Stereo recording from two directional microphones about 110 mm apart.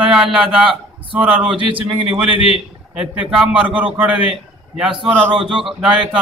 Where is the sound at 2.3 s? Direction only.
55° left (ahead or behind).